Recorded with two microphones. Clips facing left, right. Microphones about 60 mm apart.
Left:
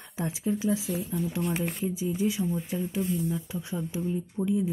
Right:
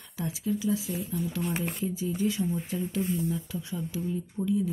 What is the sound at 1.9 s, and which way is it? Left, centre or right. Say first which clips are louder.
Speech: left 1 dB; centre.